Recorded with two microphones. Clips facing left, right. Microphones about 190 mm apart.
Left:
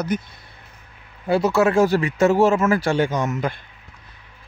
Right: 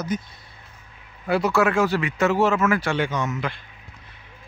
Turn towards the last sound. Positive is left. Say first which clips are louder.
# left 4 dB
turn(degrees=40)  # may be behind; listen again after turning